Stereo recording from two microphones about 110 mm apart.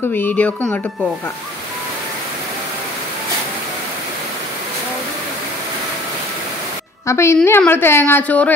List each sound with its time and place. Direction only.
0.1 s a woman's voice: 15° left (ahead or behind)
7.1 s a woman's voice: 25° left (ahead or behind)